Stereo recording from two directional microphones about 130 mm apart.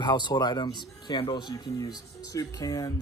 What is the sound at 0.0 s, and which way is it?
Speech, 35° left (ahead or behind).